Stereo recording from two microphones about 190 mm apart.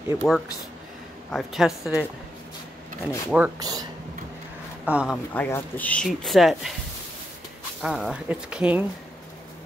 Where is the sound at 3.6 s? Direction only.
20° right (ahead or behind).